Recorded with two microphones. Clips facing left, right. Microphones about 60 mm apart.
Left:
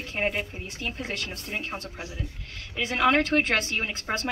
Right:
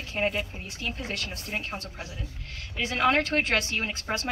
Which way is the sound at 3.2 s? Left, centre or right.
Left.